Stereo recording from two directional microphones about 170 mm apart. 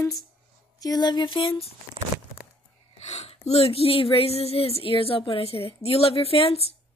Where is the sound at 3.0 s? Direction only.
40° left (ahead or behind).